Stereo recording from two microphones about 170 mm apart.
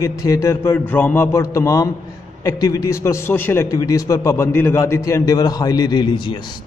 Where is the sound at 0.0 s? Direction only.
20° left (ahead or behind).